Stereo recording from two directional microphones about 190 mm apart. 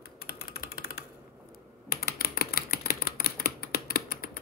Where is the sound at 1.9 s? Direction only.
55° left (ahead or behind).